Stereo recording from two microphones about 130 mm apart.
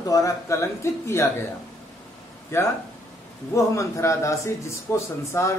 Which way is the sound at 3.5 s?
25° left (ahead or behind).